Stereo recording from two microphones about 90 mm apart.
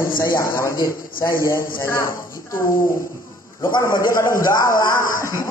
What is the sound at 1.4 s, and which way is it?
Speech, 25° left (ahead or behind).